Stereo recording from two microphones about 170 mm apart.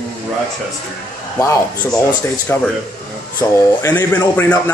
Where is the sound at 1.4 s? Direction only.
20° left (ahead or behind).